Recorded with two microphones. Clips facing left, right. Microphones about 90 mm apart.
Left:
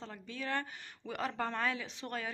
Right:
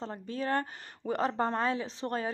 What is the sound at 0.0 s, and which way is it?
A woman's voice, 35° right (ahead or behind).